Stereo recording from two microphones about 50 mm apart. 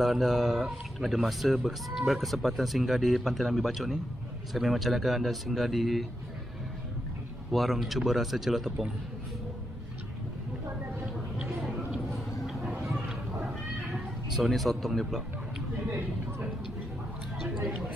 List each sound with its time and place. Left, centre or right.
0.0 s speech: centre
7.5 s speech: centre
11.4 s a sound: centre
13.9 s speech: centre
15.9 s speech: right